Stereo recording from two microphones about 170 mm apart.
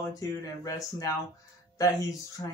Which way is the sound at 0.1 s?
20° left (ahead or behind).